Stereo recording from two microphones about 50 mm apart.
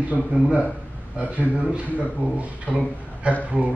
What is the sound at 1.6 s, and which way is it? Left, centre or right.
Speech, right.